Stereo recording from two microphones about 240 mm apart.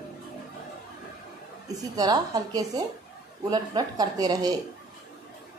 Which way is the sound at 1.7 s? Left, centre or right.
Centre.